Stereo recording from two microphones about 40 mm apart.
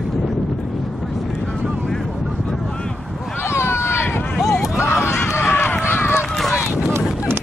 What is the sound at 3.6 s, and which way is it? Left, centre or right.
Run, left.